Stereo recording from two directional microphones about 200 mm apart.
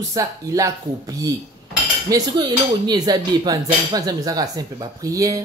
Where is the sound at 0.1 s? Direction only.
15° right (ahead or behind).